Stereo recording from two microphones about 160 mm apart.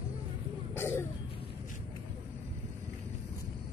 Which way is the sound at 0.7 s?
15° left (ahead or behind).